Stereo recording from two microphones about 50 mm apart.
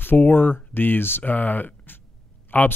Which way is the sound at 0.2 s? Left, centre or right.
Left.